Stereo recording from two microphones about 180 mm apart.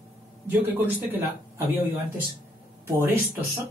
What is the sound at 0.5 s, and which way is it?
Speech, 10° right (ahead or behind).